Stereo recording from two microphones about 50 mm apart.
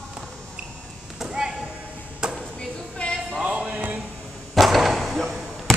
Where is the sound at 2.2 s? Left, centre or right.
Centre.